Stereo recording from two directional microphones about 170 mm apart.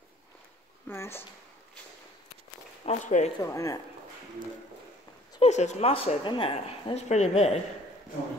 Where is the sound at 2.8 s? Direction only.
40° left (ahead or behind).